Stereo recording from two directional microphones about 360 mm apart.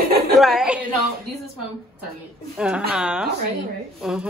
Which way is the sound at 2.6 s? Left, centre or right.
Centre.